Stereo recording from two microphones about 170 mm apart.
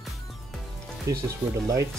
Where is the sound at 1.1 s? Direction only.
20° right (ahead or behind).